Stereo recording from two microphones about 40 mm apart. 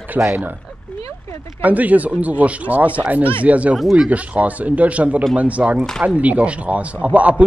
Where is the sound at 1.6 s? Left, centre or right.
Right.